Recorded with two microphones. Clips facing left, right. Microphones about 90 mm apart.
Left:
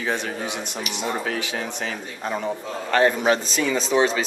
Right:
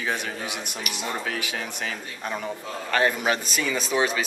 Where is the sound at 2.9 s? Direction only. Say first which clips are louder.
Left 4 dB; 20° left (ahead or behind).